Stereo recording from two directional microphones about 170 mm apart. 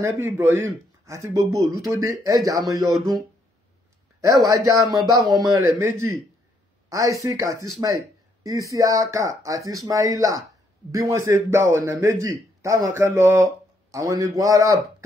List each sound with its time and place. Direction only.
0.0 s a man's voice: 15° right (ahead or behind)
5.1 s speech: centre (ahead or behind)
5.5 s a man's voice: 15° right (ahead or behind)